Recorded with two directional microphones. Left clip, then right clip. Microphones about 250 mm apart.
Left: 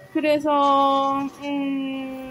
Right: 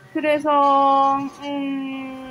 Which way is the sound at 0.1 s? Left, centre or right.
Centre.